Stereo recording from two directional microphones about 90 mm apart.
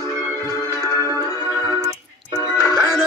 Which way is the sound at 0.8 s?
35° left (ahead or behind).